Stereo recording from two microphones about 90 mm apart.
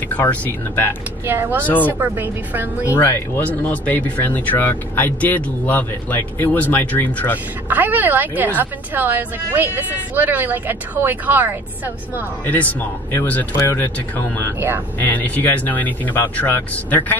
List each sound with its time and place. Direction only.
0.1 s speech: 20° left (ahead or behind)
1.2 s speech: 25° right (ahead or behind)
2.9 s speech: 30° left (ahead or behind)
7.7 s speech: 20° right (ahead or behind)
12.4 s speech: 20° left (ahead or behind)